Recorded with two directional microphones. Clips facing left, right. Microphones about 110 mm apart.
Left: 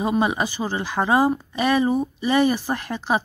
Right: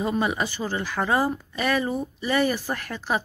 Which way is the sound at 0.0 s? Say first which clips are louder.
Left 3 dB; 20° left (ahead or behind).